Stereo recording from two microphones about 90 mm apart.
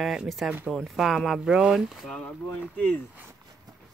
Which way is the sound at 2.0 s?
10° left (ahead or behind).